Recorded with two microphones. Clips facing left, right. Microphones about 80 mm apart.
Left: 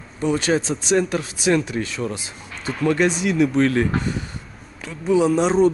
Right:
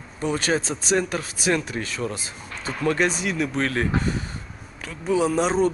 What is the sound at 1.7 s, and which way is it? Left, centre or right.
Speech, right.